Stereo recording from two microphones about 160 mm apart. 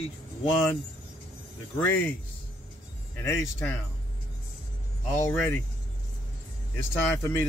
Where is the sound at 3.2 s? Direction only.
15° left (ahead or behind).